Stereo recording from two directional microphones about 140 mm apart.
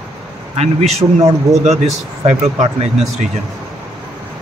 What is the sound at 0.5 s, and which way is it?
A man's voice, 50° right (ahead or behind).